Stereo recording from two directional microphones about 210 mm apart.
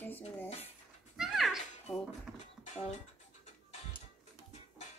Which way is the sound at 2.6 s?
30° left (ahead or behind).